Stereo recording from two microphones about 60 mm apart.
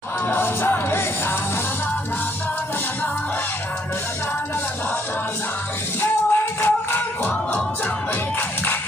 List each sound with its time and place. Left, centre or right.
0.3 s music: left
5.9 s music: left